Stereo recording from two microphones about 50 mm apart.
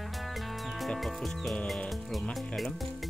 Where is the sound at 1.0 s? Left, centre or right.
Centre.